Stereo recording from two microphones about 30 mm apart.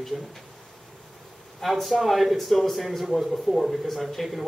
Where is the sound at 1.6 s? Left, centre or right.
Centre.